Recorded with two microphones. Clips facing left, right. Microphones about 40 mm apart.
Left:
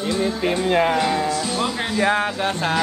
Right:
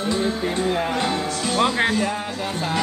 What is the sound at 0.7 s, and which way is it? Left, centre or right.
Speech, left.